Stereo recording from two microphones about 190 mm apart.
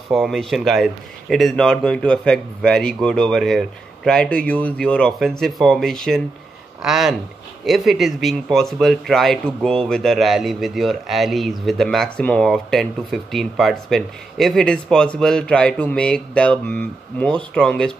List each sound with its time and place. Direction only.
0.1 s speech: centre (ahead or behind)